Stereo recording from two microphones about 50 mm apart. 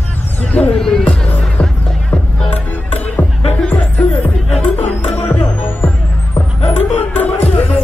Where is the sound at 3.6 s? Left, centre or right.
Left.